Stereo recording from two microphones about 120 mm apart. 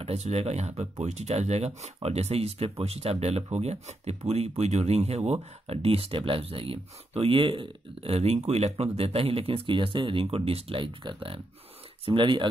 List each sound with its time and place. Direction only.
0.0 s speech: 60° right (ahead or behind); by 12.4 s 45° right (ahead or behind)